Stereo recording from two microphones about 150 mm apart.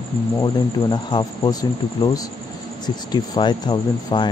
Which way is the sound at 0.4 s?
25° left (ahead or behind).